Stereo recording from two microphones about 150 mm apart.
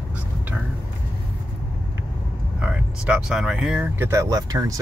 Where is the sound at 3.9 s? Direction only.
15° right (ahead or behind).